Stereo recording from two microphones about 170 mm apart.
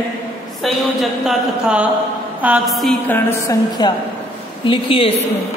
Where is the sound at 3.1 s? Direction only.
15° left (ahead or behind).